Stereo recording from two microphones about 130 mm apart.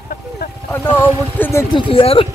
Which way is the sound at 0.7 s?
20° left (ahead or behind).